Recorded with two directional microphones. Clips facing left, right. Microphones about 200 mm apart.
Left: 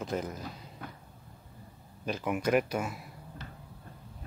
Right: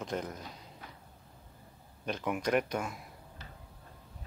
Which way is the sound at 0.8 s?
55° left (ahead or behind).